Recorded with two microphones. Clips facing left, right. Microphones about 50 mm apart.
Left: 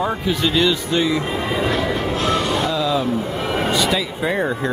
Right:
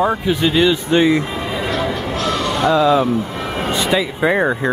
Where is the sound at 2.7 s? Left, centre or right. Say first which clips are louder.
Right 6 dB; right.